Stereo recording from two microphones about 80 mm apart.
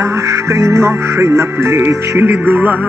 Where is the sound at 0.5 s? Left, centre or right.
Right.